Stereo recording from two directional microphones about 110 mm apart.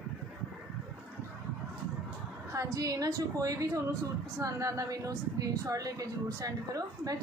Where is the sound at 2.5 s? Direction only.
30° right (ahead or behind).